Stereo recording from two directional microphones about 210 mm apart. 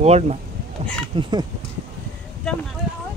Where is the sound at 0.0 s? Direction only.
30° right (ahead or behind).